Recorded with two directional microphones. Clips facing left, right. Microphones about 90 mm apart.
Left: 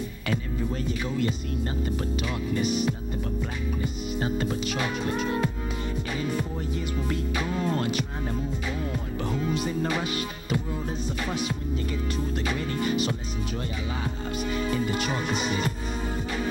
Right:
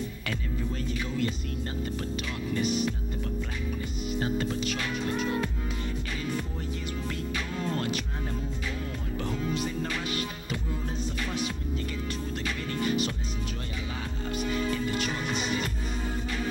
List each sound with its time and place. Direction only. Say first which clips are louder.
0.8 s speech: left 1 dB; 15° left (ahead or behind)
7.1 s music: left 5 dB; 15° left (ahead or behind)
9.2 s music: left 3 dB; 15° left (ahead or behind)
11.1 s speech: left 2 dB; 15° left (ahead or behind)
12.4 s music: left 1 dB; 15° left (ahead or behind)
14.0 s speech: right 1 dB; 15° left (ahead or behind)